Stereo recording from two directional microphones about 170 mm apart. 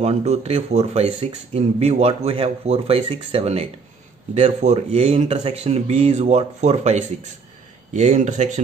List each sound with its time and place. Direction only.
0.0 s speech: 40° right (ahead or behind)